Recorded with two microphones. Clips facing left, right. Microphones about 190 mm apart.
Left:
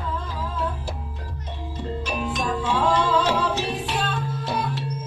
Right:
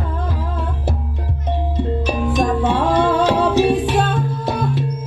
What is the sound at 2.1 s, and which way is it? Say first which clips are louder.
Music: right 7 dB; 60° right (ahead or behind).